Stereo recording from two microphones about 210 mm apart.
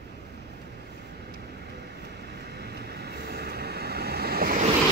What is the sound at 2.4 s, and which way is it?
Vehicle, 50° right (ahead or behind).